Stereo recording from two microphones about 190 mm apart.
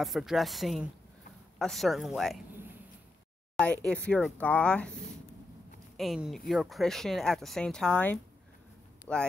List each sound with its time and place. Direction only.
0.0 s speech: centre (ahead or behind)
3.5 s speech: 5° left (ahead or behind)